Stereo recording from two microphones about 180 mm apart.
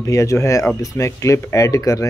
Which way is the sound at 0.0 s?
15° left (ahead or behind).